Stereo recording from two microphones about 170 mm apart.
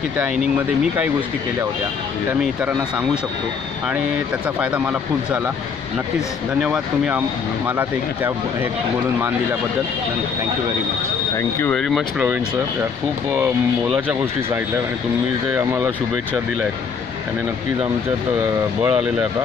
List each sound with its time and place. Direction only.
2.4 s speech: 10° right (ahead or behind)
4.6 s speech: 10° right (ahead or behind)
6.6 s speech: 5° right (ahead or behind)
11.7 s speech: centre (ahead or behind)
13.4 s speech: 5° right (ahead or behind)
18.8 s speech: 10° right (ahead or behind)